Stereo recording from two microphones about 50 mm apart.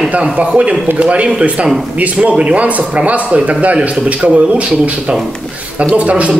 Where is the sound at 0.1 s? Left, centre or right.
Right.